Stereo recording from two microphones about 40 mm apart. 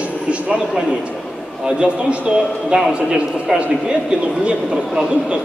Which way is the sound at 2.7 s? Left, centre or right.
Right.